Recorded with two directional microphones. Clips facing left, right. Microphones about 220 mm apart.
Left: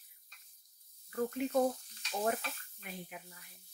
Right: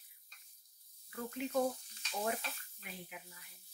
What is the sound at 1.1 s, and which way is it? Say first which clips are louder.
Snake: left 9 dB; 45° left (ahead or behind).